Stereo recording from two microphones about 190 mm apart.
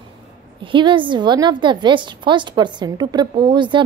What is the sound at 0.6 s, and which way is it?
A woman's voice, 25° right (ahead or behind).